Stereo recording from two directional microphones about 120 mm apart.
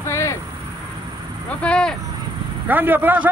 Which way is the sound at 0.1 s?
25° left (ahead or behind).